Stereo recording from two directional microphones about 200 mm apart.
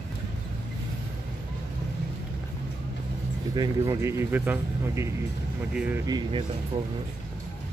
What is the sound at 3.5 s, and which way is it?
Speech, 20° right (ahead or behind).